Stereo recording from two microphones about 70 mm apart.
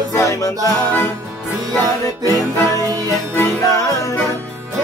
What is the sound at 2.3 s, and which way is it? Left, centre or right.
Music, left.